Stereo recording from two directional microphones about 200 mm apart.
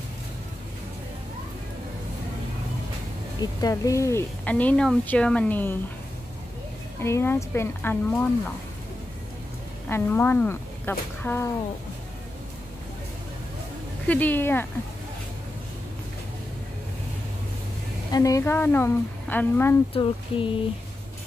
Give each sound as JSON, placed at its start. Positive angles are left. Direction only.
{"t": 3.3, "sound": "speech", "side_deg": 15}
{"t": 7.0, "sound": "speech", "side_deg": 10}
{"t": 9.8, "sound": "speech", "side_deg": 10}
{"t": 14.0, "sound": "speech", "side_deg": 10}
{"t": 18.1, "sound": "speech", "side_deg": 15}
{"t": 19.9, "sound": "speech", "side_deg": 25}